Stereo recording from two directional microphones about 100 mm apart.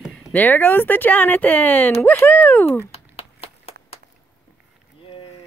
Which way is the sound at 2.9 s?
80° left.